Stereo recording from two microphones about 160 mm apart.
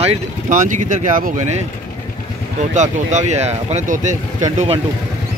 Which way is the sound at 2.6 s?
45° right (ahead or behind).